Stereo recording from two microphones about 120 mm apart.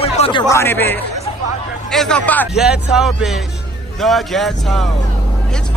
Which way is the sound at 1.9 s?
5° left (ahead or behind).